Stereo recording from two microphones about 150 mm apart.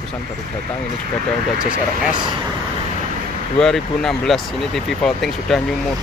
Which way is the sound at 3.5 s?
5° left (ahead or behind).